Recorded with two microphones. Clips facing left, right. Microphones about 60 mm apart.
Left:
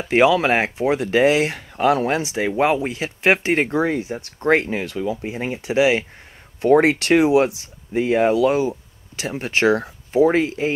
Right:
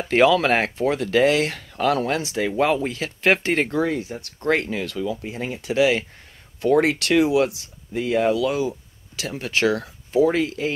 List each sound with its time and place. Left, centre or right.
0.1 s speech: centre